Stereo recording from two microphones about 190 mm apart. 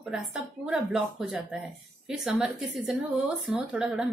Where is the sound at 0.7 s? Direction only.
5° right (ahead or behind).